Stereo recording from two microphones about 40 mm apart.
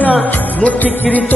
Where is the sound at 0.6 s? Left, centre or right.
Left.